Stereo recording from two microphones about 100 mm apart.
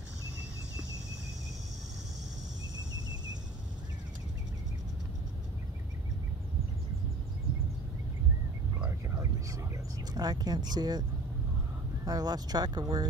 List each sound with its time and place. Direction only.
10.1 s speech: 40° right (ahead or behind)